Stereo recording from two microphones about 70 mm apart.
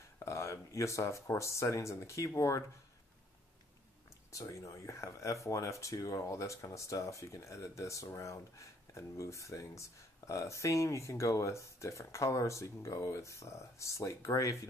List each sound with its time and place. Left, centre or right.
0.2 s speech: left
4.3 s speech: left